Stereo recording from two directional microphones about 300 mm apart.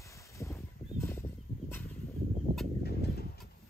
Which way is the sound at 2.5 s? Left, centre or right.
Right.